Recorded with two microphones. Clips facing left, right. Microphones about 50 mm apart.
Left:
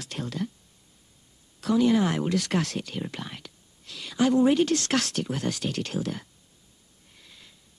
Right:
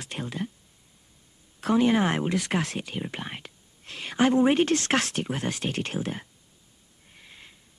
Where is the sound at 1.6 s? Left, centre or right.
Right.